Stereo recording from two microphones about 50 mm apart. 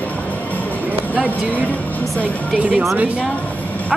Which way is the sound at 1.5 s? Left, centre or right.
Left.